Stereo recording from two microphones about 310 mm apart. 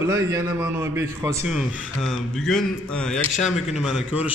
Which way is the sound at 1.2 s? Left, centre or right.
Centre.